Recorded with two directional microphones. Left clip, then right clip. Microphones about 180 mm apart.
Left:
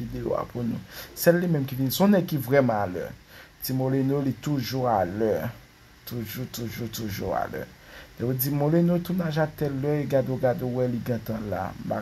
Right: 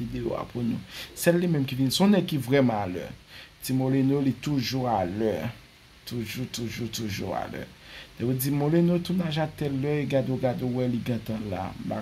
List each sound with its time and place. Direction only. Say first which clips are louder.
0.2 s speech: left 3 dB; centre (ahead or behind)